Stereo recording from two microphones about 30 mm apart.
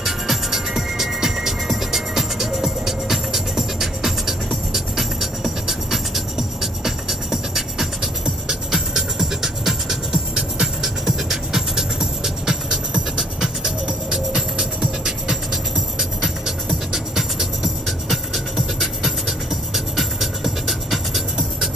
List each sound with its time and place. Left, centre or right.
0.0 s music: centre